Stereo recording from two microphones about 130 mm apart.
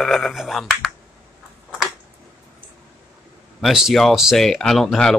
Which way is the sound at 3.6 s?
Centre (ahead or behind).